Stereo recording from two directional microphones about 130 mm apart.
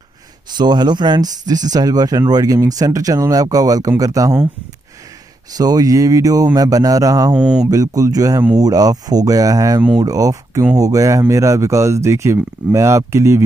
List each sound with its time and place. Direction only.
0.5 s speech: 35° right (ahead or behind)
5.5 s speech: 30° right (ahead or behind)
7.3 s speech: 5° right (ahead or behind)
7.7 s speech: 25° right (ahead or behind)